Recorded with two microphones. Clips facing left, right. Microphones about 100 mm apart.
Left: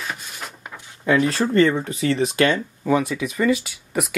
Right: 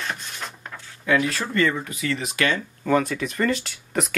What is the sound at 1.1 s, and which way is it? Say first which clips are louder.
Speech: left 4 dB; 35° left (ahead or behind).